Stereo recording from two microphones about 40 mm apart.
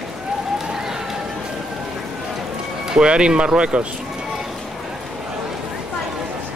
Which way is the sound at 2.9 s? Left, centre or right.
Right.